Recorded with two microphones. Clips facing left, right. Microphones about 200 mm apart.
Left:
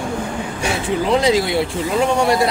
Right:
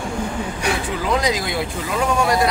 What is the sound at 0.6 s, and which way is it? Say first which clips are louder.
Speech: left 5 dB; 25° left (ahead or behind).